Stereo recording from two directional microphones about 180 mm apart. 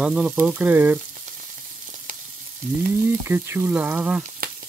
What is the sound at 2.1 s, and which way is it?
Frying, 50° right (ahead or behind).